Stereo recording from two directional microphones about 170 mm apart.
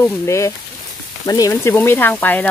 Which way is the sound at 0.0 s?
15° left (ahead or behind).